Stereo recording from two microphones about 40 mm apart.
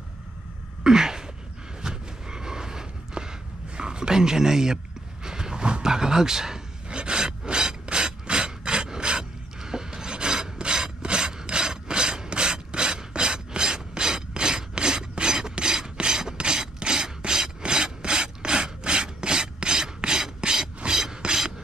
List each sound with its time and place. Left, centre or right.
0.8 s gasp: centre
1.8 s a sound: centre
7.0 s rub: right
9.6 s filing: centre